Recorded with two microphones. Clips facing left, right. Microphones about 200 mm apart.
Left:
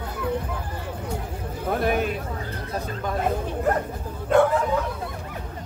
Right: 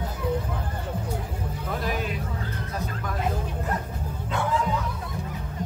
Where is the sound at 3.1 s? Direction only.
55° left (ahead or behind).